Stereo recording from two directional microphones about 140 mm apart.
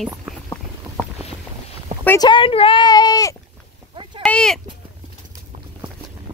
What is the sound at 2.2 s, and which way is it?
Speech, 35° left (ahead or behind).